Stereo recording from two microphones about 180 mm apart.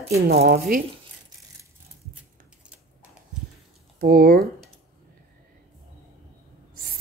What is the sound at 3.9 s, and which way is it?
Speech, 50° right (ahead or behind).